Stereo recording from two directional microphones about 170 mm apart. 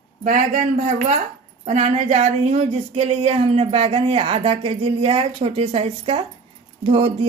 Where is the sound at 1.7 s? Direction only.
45° right (ahead or behind).